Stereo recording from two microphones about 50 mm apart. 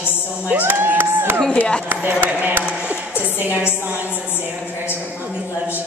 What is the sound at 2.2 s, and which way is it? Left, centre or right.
A woman's voice, right.